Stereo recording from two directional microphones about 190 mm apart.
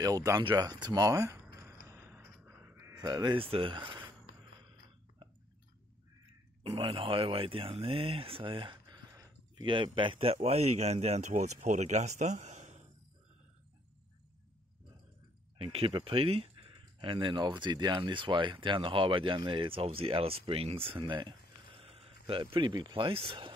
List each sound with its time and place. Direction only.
0.0 s a sound: 20° right (ahead or behind)
6.6 s speech: 30° right (ahead or behind)
15.5 s speech: 30° right (ahead or behind)